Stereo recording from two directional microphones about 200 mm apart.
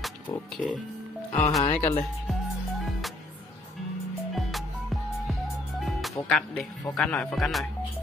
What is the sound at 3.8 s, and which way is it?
Music, centre (ahead or behind).